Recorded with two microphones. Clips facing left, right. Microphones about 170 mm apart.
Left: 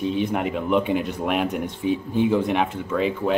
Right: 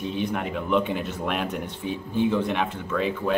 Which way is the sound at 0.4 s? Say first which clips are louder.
Left 3 dB; 15° left (ahead or behind).